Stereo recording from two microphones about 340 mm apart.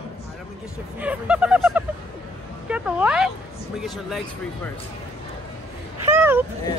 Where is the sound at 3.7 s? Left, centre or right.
Centre.